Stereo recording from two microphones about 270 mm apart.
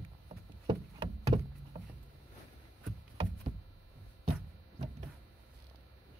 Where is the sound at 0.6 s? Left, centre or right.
Centre.